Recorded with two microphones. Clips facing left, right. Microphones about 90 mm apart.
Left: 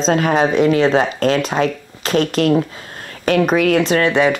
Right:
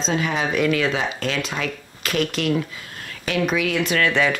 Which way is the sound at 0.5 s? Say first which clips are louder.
Left 7 dB; 30° left (ahead or behind).